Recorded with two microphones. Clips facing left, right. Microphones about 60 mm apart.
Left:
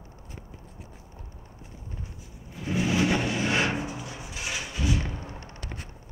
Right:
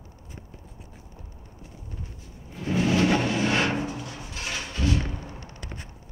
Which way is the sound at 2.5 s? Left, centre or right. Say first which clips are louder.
Right 3 dB; centre.